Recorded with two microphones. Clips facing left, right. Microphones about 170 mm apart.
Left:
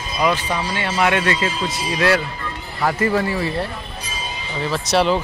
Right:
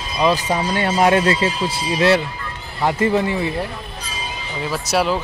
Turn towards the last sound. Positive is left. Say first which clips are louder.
# left 2 dB
turn(degrees=-5)  # may be behind; listen again after turning